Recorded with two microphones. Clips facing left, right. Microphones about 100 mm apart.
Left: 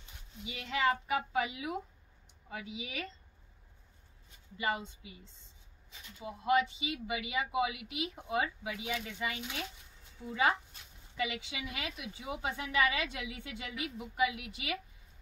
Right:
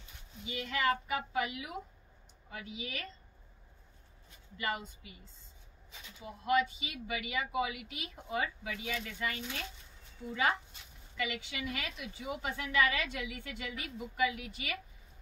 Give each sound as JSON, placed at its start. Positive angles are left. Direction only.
{"t": 0.7, "sound": "speech", "side_deg": 20}
{"t": 4.6, "sound": "speech", "side_deg": 20}
{"t": 11.1, "sound": "speech", "side_deg": 15}